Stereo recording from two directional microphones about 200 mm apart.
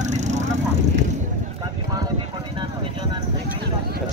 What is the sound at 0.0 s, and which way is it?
Vehicle, 35° right (ahead or behind).